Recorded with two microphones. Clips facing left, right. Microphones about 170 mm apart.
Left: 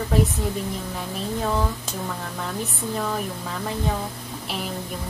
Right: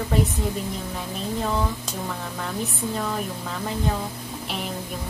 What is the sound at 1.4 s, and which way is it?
Speech, centre (ahead or behind).